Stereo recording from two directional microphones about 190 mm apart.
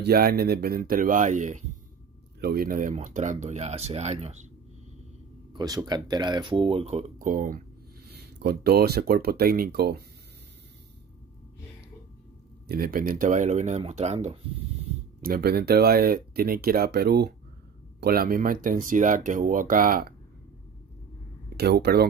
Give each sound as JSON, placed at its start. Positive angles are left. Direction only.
{"t": 0.0, "sound": "speech", "side_deg": -55}
{"t": 5.5, "sound": "speech", "side_deg": -20}
{"t": 7.2, "sound": "speech", "side_deg": -45}
{"t": 8.1, "sound": "speech", "side_deg": -55}
{"t": 12.6, "sound": "speech", "side_deg": -50}
{"t": 15.2, "sound": "speech", "side_deg": -55}
{"t": 21.5, "sound": "speech", "side_deg": -60}